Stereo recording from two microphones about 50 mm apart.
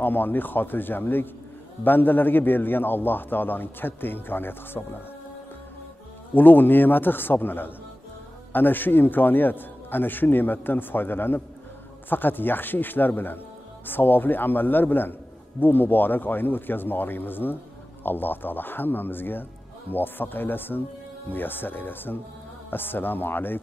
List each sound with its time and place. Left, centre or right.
0.0 s a man's voice: left
6.3 s a man's voice: left